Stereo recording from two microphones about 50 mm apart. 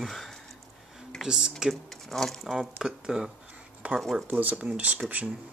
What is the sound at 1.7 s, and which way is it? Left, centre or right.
Speech, centre.